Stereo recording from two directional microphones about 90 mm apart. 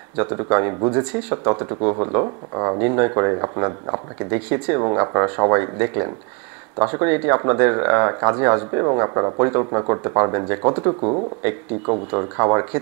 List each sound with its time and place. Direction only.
0.1 s speech: 25° right (ahead or behind)
11.4 s speech: 25° right (ahead or behind)